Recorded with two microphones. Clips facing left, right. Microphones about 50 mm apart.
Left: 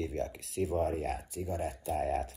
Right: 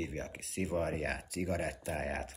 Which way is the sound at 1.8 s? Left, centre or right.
Right.